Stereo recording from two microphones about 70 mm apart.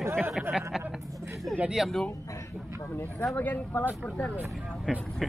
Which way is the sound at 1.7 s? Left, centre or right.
Centre.